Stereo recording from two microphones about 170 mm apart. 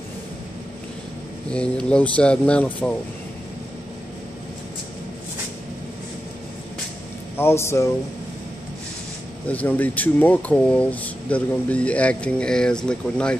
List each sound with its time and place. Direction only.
1.5 s speech: 5° left (ahead or behind)
7.3 s speech: 15° left (ahead or behind)
9.5 s speech: 10° left (ahead or behind)